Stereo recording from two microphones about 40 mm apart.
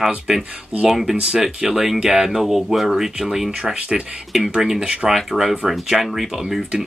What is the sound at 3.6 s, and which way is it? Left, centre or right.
Speech, right.